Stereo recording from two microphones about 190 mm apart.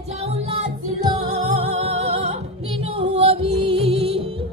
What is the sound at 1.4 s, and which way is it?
Music, 35° right (ahead or behind).